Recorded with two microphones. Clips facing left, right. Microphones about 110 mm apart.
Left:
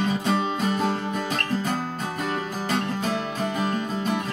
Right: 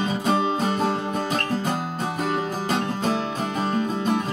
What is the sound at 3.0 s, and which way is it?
Music, 30° right (ahead or behind).